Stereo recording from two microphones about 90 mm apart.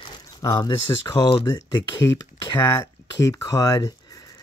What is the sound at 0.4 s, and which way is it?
Speech, 35° left (ahead or behind).